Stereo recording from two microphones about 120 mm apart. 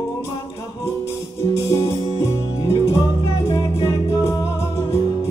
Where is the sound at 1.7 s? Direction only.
45° left (ahead or behind).